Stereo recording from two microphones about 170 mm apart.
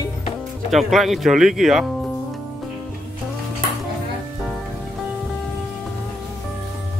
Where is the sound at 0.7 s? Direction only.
Centre (ahead or behind).